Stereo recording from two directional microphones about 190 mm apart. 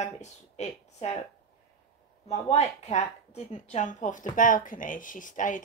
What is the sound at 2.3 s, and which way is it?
Speech, 35° left (ahead or behind).